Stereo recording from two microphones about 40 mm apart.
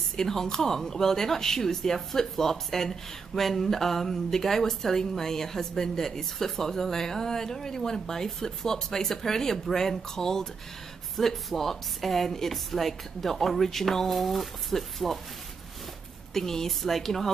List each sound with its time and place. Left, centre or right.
0.1 s speech: centre
16.3 s speech: centre